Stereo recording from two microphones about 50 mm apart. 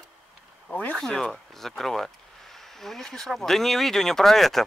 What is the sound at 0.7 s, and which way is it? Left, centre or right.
Speech, left.